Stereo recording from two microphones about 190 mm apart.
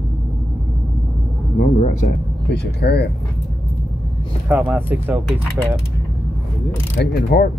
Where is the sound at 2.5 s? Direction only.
60° left (ahead or behind).